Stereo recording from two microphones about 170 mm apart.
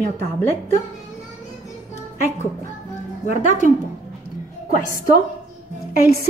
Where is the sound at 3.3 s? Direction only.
45° left (ahead or behind).